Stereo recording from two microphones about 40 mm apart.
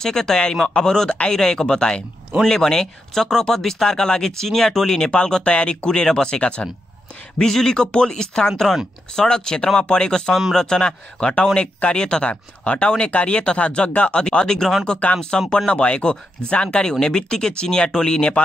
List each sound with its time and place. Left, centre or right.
0.0 s speech: centre
5.1 s speech: left
7.4 s speech: centre
7.7 s speech: left
12.3 s speech: left
15.0 s speech: left
15.5 s speech: left